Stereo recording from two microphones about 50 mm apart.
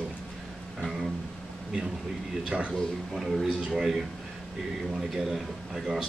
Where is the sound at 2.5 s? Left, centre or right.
Right.